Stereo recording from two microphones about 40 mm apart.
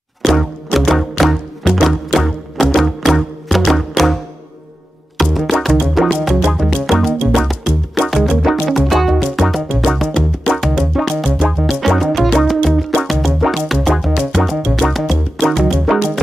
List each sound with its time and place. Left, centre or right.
0.2 s music: centre
14.5 s music: centre
14.8 s music: centre